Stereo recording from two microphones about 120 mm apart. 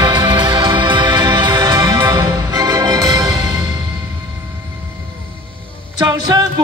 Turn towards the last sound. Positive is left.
turn(degrees=-30)  # may be behind; listen again after turning